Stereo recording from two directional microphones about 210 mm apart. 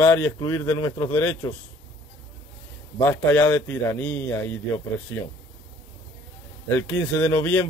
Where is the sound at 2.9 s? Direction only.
10° left (ahead or behind).